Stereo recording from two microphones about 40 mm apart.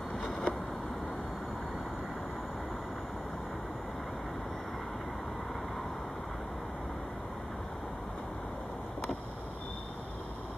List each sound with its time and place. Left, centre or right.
0.2 s vehicle: centre